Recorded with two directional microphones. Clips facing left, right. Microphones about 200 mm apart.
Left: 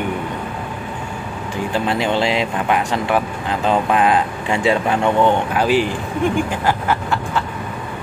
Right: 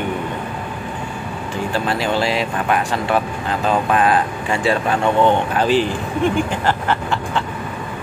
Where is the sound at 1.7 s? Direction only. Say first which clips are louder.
Left 1 dB; 20° left (ahead or behind).